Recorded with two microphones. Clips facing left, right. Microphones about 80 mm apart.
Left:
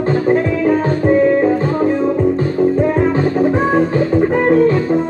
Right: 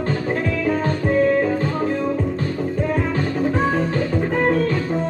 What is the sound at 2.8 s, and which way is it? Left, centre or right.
Music, centre.